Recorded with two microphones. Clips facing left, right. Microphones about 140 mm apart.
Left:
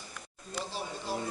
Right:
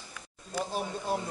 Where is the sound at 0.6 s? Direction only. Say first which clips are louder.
Right 5 dB; 50° right (ahead or behind).